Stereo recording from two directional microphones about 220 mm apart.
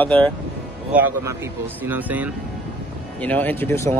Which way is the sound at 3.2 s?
5° left (ahead or behind).